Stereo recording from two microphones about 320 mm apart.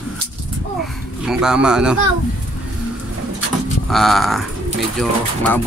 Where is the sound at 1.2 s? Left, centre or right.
Centre.